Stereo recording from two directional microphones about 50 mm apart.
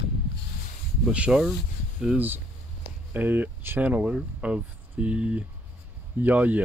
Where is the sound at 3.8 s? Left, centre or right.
Right.